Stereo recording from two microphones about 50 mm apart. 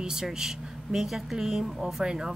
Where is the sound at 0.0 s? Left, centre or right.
Centre.